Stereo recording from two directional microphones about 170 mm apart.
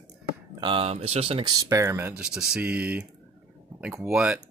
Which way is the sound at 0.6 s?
35° right (ahead or behind).